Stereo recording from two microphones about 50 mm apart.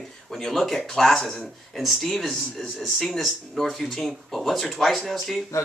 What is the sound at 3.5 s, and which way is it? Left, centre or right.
Speech, centre.